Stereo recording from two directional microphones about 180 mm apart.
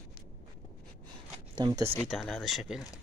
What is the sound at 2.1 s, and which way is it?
Speech, centre (ahead or behind).